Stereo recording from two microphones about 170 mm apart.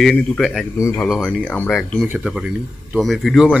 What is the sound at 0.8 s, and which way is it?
Speech, 15° left (ahead or behind).